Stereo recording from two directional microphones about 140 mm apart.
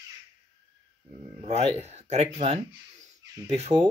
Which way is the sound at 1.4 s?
50° right (ahead or behind).